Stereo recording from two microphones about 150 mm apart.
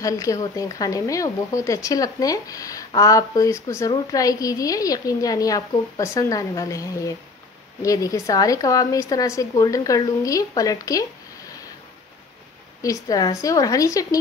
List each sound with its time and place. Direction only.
0.0 s speech: 20° left (ahead or behind)
12.8 s speech: 25° left (ahead or behind)